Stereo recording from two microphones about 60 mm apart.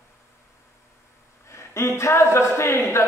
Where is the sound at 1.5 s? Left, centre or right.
Left.